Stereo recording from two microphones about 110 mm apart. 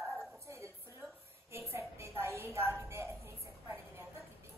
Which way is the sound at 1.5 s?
25° right (ahead or behind).